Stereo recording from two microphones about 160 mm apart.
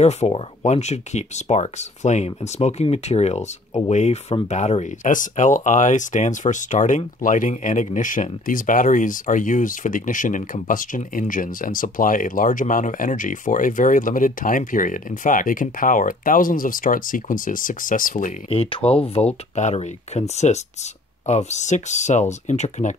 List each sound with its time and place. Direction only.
0.0 s speech: 45° left (ahead or behind)
18.5 s speech: 35° left (ahead or behind)